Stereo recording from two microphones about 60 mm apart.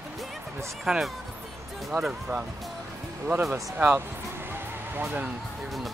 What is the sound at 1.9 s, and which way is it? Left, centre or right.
Speech, right.